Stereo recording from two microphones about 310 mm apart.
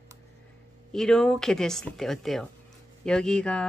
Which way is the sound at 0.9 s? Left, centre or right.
Centre.